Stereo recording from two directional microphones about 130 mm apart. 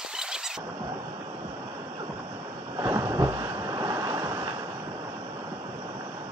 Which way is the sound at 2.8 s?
25° right (ahead or behind).